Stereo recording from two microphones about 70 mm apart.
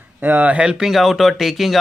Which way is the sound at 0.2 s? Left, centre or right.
Right.